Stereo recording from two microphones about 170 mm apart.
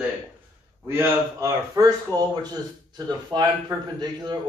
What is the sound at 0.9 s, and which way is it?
Speech, 15° right (ahead or behind).